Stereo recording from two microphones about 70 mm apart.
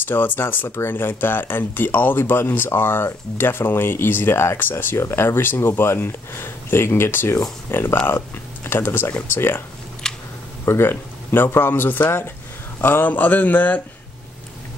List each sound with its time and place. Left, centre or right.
0.0 s speech: left
10.0 s a sound: centre
10.6 s speech: left